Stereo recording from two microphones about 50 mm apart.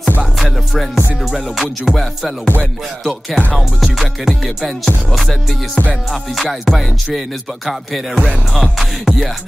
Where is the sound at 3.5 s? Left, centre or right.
Centre.